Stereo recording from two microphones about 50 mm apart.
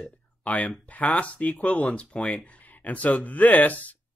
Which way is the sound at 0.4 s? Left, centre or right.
Left.